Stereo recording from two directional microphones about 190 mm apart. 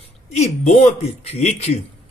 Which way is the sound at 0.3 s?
35° left (ahead or behind).